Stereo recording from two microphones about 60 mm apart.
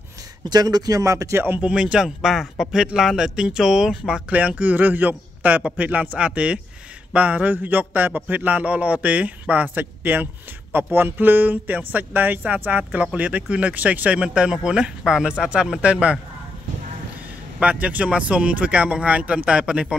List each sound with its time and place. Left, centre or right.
0.5 s speech: right
1.6 s speech: centre
2.0 s speech: centre
4.3 s speech: right
17.6 s speech: right